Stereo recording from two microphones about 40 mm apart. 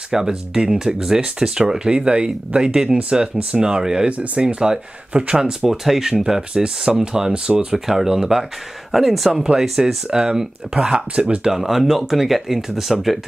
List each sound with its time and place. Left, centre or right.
0.1 s speech: centre
4.1 s speech: right
5.7 s speech: centre; by 7.6 s right
7.7 s speech: centre
9.4 s speech: centre
11.5 s speech: centre